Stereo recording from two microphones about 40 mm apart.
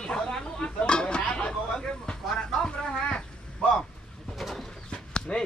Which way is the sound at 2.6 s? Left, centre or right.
Centre.